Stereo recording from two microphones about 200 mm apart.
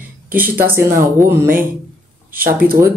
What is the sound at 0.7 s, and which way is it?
Speech, 10° right (ahead or behind).